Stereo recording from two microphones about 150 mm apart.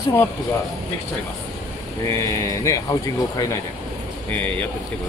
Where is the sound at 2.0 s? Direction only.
20° left (ahead or behind).